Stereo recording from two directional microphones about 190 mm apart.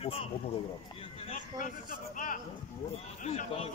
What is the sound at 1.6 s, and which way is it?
Speech, 45° left (ahead or behind).